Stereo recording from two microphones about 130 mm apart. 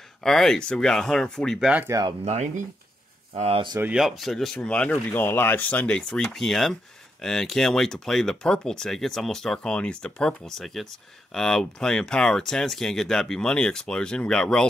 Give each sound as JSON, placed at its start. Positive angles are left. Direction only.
{"t": 0.2, "sound": "speech", "side_deg": 5}
{"t": 1.9, "sound": "speech", "side_deg": -25}
{"t": 2.2, "sound": "speech", "side_deg": -65}
{"t": 3.3, "sound": "speech", "side_deg": -50}
{"t": 3.8, "sound": "speech", "side_deg": -5}